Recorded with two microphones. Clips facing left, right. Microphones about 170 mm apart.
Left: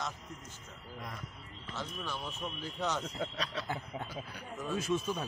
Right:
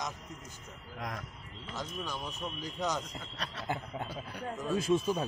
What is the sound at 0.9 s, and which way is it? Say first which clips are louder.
Speech: right 5 dB; 90° right.